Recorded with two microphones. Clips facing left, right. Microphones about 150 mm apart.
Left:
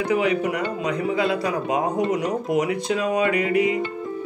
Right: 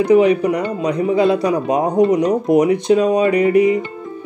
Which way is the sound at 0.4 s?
40° right (ahead or behind).